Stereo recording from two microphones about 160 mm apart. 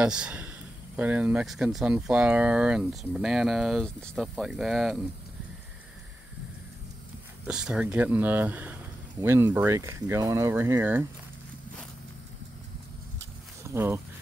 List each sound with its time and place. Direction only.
0.0 s speech: 5° right (ahead or behind)
7.4 s speech: 5° right (ahead or behind)
13.7 s speech: 15° right (ahead or behind)